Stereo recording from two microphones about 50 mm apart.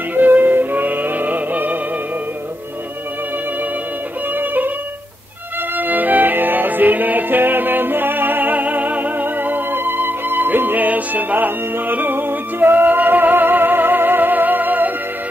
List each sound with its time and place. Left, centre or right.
0.1 s music: right
4.4 s music: right
5.8 s music: right